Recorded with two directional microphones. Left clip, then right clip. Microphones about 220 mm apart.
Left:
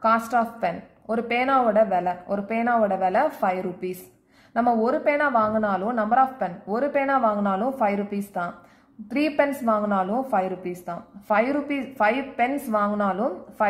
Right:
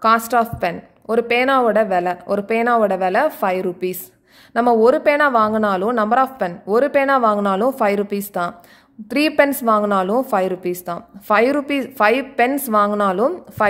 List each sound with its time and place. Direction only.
0.0 s a woman's voice: 40° right (ahead or behind)